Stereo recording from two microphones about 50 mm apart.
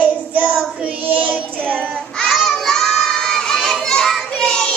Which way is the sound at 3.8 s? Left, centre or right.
Centre.